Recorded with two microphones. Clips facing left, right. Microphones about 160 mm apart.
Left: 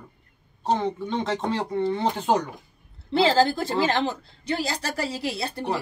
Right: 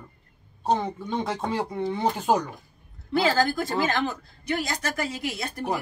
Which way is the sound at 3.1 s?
30° left (ahead or behind).